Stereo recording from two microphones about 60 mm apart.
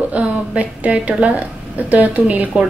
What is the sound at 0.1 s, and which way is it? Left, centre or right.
A woman's voice, right.